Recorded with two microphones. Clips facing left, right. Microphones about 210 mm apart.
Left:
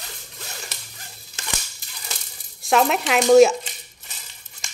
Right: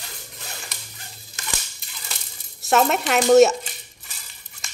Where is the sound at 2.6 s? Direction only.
Centre (ahead or behind).